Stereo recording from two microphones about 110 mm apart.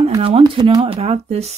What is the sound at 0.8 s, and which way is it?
Speech, 65° right (ahead or behind).